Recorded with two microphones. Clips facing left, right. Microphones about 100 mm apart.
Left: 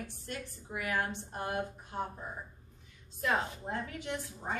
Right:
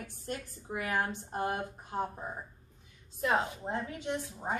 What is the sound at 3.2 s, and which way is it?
A woman's voice, 20° right (ahead or behind).